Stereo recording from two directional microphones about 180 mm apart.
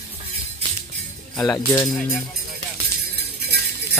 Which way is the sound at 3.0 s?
60° right (ahead or behind).